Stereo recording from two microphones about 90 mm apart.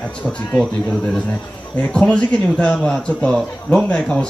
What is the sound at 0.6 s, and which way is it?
A man's voice, 10° left (ahead or behind).